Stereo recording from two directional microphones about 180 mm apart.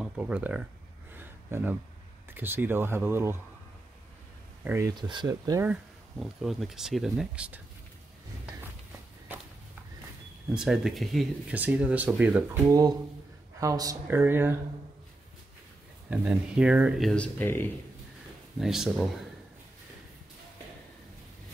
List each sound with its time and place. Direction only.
0.0 s speech: 10° right (ahead or behind)
1.1 s a sound: 10° right (ahead or behind)
2.3 s speech: 10° right (ahead or behind)
4.6 s speech: 15° right (ahead or behind)
5.7 s speech: 5° right (ahead or behind)
10.5 s speech: 5° right (ahead or behind)
13.6 s speech: 20° right (ahead or behind)
16.1 s speech: 5° right (ahead or behind); by 17.6 s 10° left (ahead or behind)
18.6 s speech: centre (ahead or behind)